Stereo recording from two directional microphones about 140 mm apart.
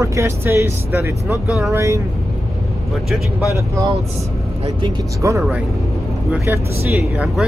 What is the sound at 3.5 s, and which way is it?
Speech, 20° right (ahead or behind).